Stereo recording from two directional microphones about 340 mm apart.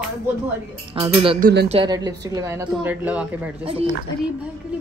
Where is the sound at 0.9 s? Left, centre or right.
Centre.